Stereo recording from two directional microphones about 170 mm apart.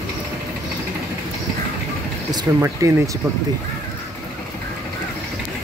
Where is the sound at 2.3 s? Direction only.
15° right (ahead or behind).